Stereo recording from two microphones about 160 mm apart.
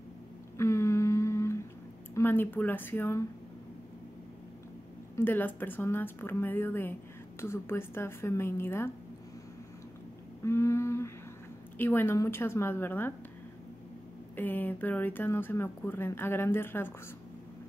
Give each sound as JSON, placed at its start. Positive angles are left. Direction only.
{"t": 0.6, "sound": "humming", "side_deg": 15}
{"t": 2.1, "sound": "speech", "side_deg": 15}
{"t": 5.1, "sound": "speech", "side_deg": 10}
{"t": 10.4, "sound": "humming", "side_deg": 15}
{"t": 11.8, "sound": "speech", "side_deg": 15}
{"t": 14.3, "sound": "speech", "side_deg": 10}